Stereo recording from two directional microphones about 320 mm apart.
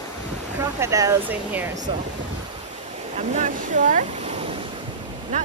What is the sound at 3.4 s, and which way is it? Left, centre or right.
Speech, right.